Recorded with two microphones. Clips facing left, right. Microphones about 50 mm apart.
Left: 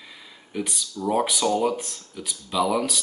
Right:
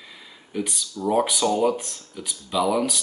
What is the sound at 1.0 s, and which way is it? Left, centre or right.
Speech, centre.